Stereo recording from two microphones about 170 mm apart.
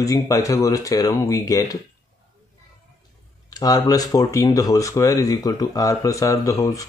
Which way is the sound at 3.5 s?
20° left (ahead or behind).